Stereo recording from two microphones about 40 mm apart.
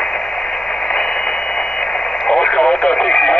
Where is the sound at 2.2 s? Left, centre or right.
Left.